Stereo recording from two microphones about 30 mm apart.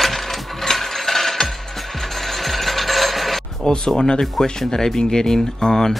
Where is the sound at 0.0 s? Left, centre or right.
Centre.